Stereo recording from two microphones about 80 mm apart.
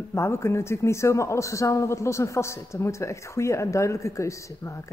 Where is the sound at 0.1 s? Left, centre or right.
Left.